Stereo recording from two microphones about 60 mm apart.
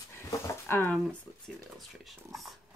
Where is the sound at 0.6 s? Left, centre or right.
Left.